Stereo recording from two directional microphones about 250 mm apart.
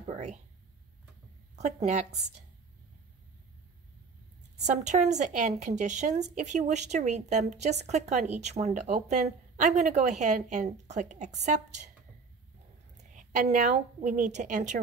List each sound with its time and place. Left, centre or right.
0.0 s speech: right
1.6 s a woman's voice: right
4.6 s a woman's voice: right
12.9 s a woman's voice: right